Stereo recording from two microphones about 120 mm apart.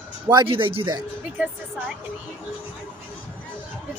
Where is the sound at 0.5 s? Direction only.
50° right (ahead or behind).